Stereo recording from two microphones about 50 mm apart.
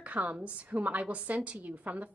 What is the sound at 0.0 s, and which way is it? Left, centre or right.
A woman's voice, right.